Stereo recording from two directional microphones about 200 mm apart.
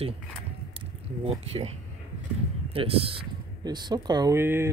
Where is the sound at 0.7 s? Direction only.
30° right (ahead or behind).